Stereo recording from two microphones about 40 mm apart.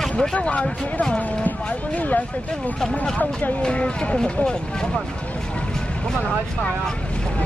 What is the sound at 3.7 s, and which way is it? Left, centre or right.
Speech, left.